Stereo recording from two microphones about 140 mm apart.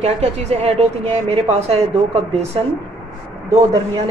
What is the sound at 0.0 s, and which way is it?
A woman's voice, 50° right (ahead or behind).